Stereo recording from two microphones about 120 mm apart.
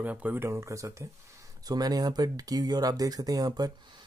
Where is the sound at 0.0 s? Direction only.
15° right (ahead or behind).